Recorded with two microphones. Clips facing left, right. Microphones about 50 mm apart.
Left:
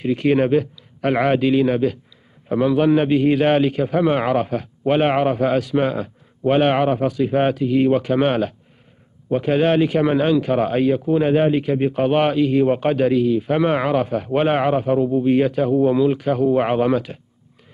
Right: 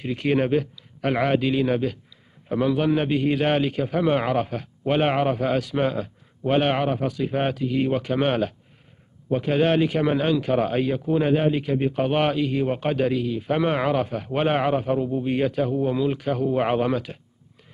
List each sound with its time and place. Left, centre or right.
0.0 s a man's voice: left
8.0 s a man's voice: left
11.1 s speech: centre
11.3 s a man's voice: left